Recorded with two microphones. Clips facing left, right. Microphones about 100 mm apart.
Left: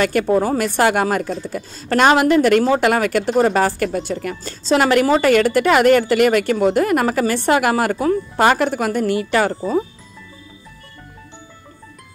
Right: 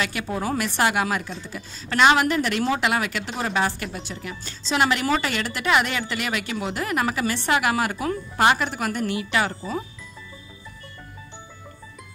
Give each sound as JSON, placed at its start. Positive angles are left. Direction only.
{"t": 0.0, "sound": "a woman's voice", "side_deg": 50}